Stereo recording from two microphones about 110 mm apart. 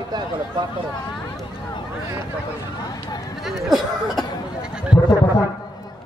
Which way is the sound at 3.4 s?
Centre (ahead or behind).